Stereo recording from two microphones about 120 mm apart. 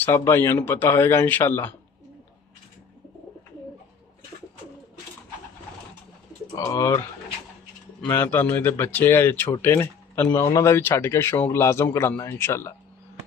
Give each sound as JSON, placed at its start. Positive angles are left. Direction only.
{"t": 0.0, "sound": "speech", "side_deg": 20}
{"t": 6.5, "sound": "speech", "side_deg": 30}
{"t": 8.0, "sound": "speech", "side_deg": 15}